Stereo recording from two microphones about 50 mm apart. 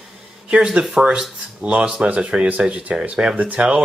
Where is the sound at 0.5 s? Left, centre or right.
Centre.